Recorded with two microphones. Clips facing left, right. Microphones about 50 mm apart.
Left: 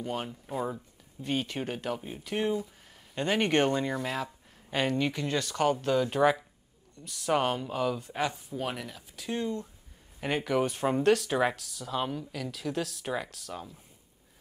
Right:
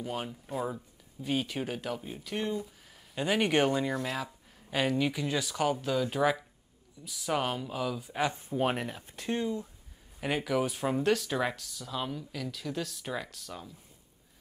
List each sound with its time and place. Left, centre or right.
0.0 s speech: centre
8.3 s speech: right
9.4 s speech: centre
10.2 s speech: centre